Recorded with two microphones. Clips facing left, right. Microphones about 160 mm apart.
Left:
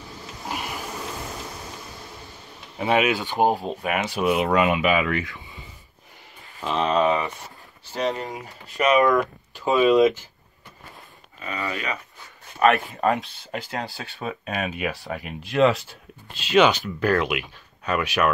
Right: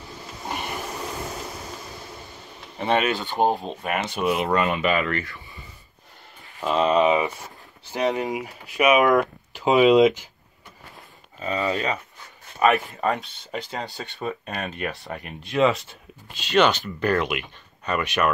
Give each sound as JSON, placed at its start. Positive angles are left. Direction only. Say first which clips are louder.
{"t": 0.5, "sound": "a sound", "louder": "right 1 dB", "side_deg": 0}
{"t": 2.8, "sound": "speech", "louder": "left 1 dB", "side_deg": 5}
{"t": 6.6, "sound": "speech", "louder": "right 2 dB", "side_deg": -5}
{"t": 11.4, "sound": "speech", "louder": "right 5 dB", "side_deg": -30}
{"t": 12.5, "sound": "speech", "louder": "left 1 dB", "side_deg": 0}